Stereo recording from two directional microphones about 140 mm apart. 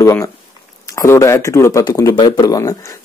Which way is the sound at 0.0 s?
20° left (ahead or behind).